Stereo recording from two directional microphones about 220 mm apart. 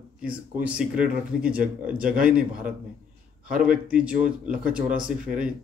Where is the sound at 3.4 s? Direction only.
40° right (ahead or behind).